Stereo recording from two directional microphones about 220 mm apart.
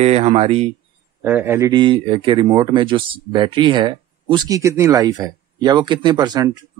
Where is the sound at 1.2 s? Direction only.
10° right (ahead or behind).